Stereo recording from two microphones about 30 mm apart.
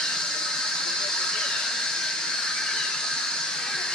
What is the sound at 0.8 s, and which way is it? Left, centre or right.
Hiss, left.